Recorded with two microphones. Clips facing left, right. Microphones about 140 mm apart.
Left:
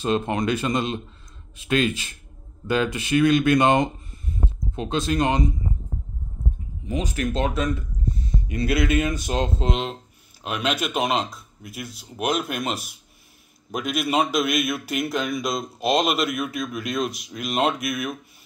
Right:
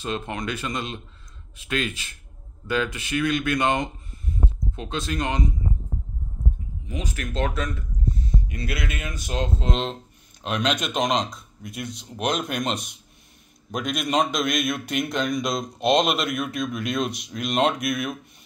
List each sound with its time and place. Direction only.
0.0 s speech: 30° left (ahead or behind)
6.9 s speech: 30° left (ahead or behind)
10.4 s a man's voice: 5° left (ahead or behind)